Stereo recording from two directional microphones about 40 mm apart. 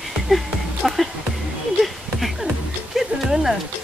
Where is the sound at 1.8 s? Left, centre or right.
Centre.